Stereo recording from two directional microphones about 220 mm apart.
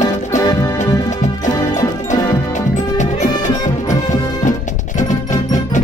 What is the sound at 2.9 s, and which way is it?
Music, 35° left (ahead or behind).